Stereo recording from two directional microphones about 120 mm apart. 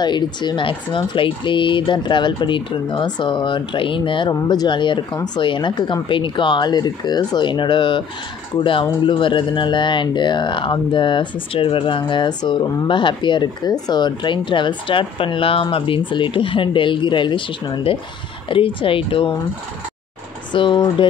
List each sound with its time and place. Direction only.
0.0 s speech: 40° left (ahead or behind)
20.5 s speech: 40° left (ahead or behind)